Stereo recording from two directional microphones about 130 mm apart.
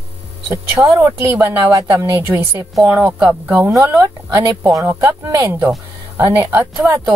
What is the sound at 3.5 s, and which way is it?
Speech, 20° right (ahead or behind).